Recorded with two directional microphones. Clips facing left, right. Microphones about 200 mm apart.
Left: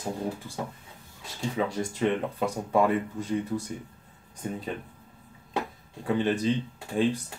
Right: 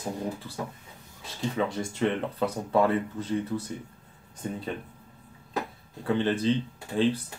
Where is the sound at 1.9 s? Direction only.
10° left (ahead or behind).